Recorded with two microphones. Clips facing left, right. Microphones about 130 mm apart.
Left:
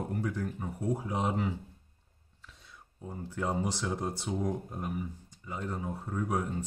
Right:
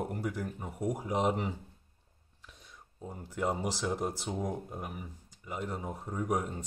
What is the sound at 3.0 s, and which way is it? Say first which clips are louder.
Speech: right 1 dB; 15° right (ahead or behind).